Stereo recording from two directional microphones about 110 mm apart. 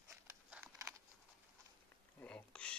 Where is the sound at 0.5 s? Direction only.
15° right (ahead or behind).